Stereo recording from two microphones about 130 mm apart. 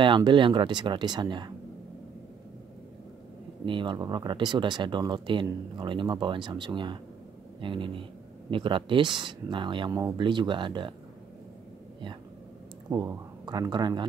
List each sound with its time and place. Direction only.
0.0 s speech: 40° right (ahead or behind)
3.6 s speech: 40° right (ahead or behind)
12.9 s speech: 30° right (ahead or behind)